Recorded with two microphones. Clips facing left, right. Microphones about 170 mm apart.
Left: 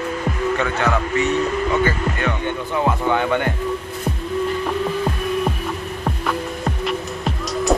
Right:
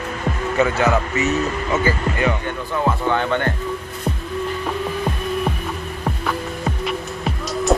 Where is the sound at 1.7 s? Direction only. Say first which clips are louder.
Even; 5° right (ahead or behind).